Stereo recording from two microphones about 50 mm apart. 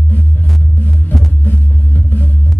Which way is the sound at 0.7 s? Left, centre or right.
Left.